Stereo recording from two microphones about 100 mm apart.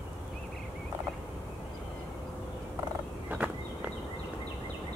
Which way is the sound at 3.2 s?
15° right (ahead or behind).